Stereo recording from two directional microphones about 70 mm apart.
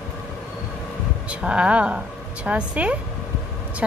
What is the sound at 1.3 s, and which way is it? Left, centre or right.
Speech, centre.